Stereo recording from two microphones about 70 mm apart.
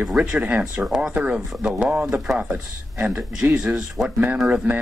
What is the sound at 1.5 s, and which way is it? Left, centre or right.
A man's voice, centre.